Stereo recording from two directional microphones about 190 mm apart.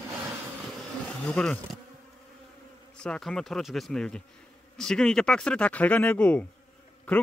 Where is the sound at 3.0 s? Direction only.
5° left (ahead or behind).